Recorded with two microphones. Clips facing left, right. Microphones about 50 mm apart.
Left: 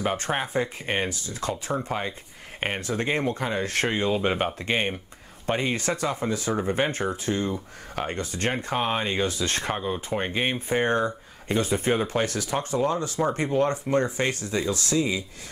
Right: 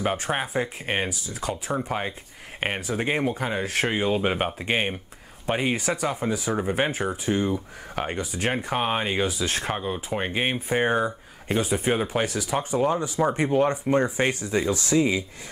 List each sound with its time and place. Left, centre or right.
0.0 s speech: centre; by 15.2 s right